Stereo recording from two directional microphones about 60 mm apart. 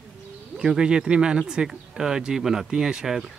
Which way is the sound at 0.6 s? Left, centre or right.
Centre.